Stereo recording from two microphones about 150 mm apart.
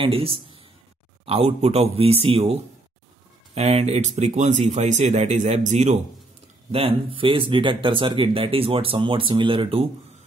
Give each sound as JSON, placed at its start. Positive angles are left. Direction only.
{"t": 0.0, "sound": "speech", "side_deg": -40}
{"t": 6.7, "sound": "speech", "side_deg": -40}